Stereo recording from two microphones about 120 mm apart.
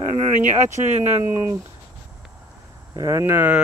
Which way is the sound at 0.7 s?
80° right.